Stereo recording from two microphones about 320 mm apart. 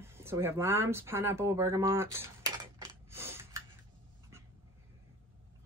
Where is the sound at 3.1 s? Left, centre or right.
Centre.